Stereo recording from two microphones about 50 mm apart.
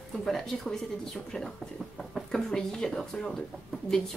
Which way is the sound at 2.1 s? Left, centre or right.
Centre.